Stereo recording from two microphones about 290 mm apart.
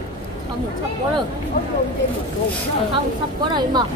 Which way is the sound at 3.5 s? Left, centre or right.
Centre.